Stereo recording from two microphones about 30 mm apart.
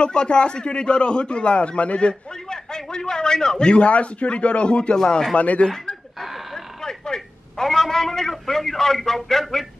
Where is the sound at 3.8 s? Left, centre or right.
Left.